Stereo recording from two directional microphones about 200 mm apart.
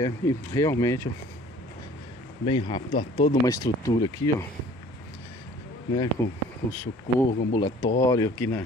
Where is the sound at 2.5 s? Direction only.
25° left (ahead or behind).